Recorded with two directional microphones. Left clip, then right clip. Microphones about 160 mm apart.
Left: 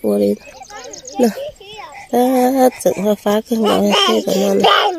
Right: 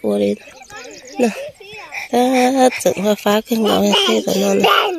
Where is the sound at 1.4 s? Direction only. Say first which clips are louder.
Left 2 dB; 60° right (ahead or behind).